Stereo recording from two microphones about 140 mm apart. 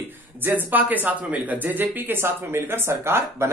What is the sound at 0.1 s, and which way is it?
Speech, 15° right (ahead or behind).